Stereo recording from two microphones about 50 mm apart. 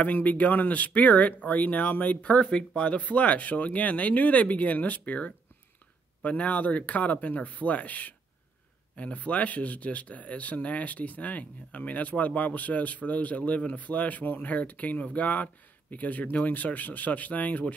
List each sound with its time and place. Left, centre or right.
0.0 s speech: left